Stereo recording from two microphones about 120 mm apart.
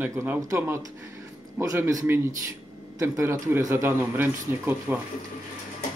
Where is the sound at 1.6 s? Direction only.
25° right (ahead or behind).